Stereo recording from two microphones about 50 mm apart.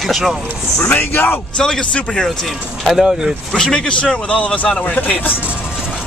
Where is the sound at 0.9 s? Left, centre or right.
Left.